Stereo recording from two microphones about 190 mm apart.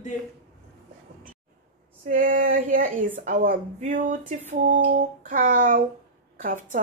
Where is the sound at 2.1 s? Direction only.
45° right (ahead or behind).